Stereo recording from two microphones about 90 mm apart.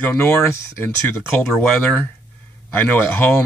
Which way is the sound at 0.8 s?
25° left (ahead or behind).